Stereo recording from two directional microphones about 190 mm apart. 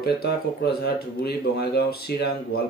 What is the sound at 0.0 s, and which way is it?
Speech, 55° left (ahead or behind).